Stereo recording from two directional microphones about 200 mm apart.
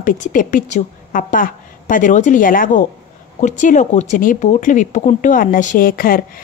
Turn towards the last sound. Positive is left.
turn(degrees=45)  # may be behind; listen again after turning